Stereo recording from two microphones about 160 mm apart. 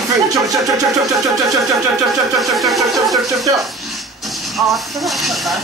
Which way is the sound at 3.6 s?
Centre (ahead or behind).